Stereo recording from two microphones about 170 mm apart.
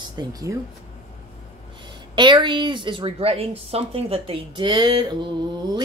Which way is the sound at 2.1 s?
25° right (ahead or behind).